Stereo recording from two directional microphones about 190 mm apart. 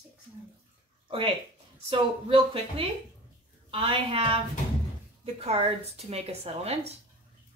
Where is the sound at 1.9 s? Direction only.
30° right (ahead or behind).